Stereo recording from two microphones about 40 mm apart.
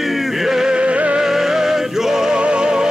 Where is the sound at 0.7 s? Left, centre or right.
Right.